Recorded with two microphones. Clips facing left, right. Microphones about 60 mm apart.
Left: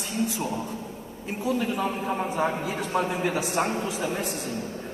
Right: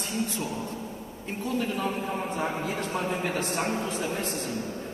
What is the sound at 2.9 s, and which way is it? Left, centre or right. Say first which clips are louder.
Speech: left 7 dB; left.